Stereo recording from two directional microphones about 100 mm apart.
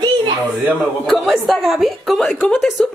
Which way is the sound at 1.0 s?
Centre (ahead or behind).